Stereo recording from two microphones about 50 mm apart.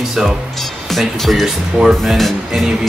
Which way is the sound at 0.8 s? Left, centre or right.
Centre.